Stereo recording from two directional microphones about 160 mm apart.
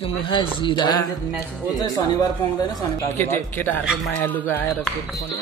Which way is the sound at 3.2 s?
10° left (ahead or behind).